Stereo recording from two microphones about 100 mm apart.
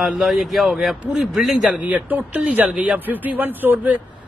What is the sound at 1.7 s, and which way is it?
A man's voice, 15° right (ahead or behind).